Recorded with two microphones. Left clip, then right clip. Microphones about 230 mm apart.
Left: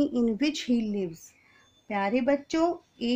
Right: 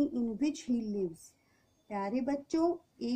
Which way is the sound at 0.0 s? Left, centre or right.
Left.